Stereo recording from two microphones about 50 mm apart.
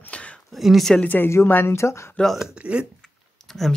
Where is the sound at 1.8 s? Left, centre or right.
Left.